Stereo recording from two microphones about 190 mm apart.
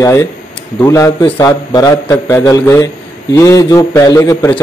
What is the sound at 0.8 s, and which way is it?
A man's voice, 15° left (ahead or behind).